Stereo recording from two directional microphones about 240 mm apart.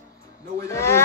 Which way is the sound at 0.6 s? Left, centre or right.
Centre.